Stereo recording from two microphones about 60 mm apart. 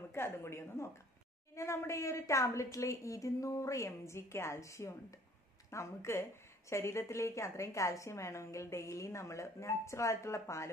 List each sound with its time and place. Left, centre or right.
0.1 s a woman's voice: left